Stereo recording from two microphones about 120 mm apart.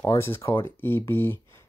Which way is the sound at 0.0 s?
25° left (ahead or behind).